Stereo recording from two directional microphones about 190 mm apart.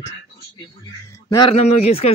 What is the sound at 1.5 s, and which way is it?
Speech, 35° left (ahead or behind).